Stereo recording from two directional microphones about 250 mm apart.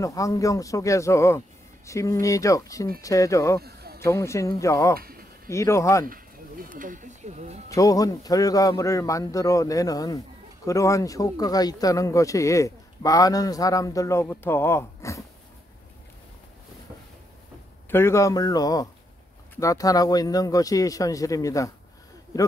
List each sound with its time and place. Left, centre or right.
0.0 s a man's voice: centre
3.6 s a sound: right
4.0 s a man's voice: centre
6.0 s a sound: right
7.7 s a man's voice: centre
17.8 s a man's voice: centre